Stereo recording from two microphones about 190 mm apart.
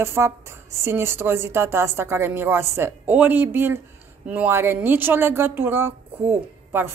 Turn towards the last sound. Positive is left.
turn(degrees=-10)  # may be behind; listen again after turning